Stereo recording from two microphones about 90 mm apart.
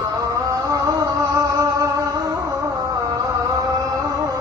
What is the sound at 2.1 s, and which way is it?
Music, 35° right (ahead or behind).